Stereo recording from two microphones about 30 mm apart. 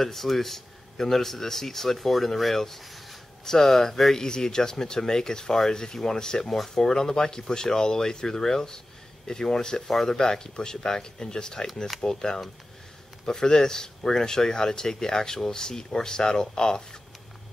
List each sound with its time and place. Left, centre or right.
0.0 s speech: centre
9.8 s speech: centre